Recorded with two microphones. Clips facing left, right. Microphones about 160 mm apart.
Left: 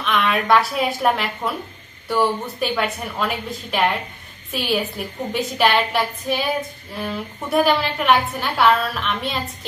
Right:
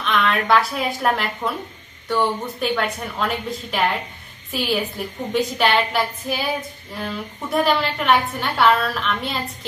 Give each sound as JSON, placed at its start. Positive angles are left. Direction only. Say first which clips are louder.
{"t": 0.0, "sound": "a woman's voice", "louder": "even", "side_deg": 0}